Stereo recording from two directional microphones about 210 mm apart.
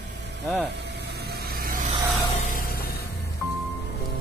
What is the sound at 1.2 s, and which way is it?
Vehicle, 50° right (ahead or behind).